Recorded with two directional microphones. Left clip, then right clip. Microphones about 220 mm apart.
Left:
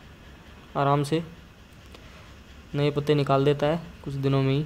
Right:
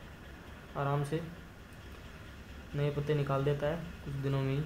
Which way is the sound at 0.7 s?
45° left (ahead or behind).